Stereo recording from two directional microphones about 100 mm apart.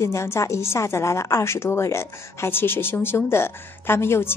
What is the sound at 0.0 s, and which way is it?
A woman's voice, 30° left (ahead or behind).